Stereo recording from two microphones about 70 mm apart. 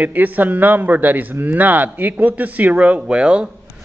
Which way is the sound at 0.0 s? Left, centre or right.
Right.